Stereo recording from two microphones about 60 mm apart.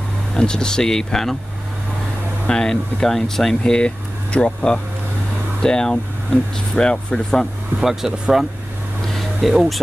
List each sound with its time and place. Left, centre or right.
0.4 s speech: centre
2.4 s speech: centre
7.8 s speech: centre
9.0 s a sound: centre